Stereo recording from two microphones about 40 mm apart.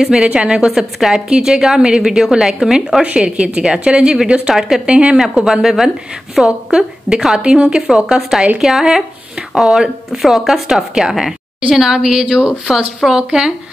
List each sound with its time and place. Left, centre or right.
0.0 s speech: centre
0.7 s speech: centre
3.2 s speech: right
4.8 s speech: right
5.2 s speech: centre
8.5 s speech: centre